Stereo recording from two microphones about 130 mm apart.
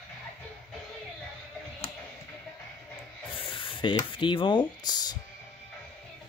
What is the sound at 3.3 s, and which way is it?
Speech, 40° left (ahead or behind).